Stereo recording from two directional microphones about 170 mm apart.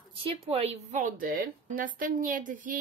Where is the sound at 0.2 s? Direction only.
35° right (ahead or behind).